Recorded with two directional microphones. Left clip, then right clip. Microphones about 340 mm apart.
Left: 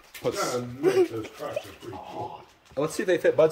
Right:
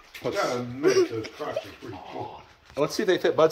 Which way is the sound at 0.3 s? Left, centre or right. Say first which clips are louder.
Right 2 dB; centre.